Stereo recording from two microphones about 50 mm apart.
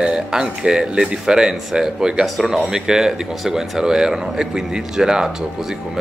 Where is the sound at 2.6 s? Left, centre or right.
Centre.